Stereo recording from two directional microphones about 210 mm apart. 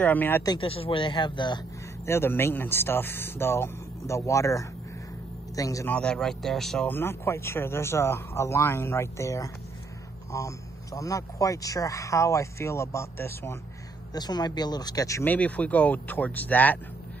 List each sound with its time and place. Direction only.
0.0 s speech: 10° left (ahead or behind)
0.5 s speech: 25° left (ahead or behind)
2.0 s speech: 10° left (ahead or behind)
5.9 s speech: 5° left (ahead or behind)